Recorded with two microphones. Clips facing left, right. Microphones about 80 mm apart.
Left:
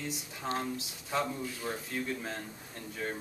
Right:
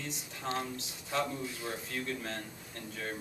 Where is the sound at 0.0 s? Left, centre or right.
Centre.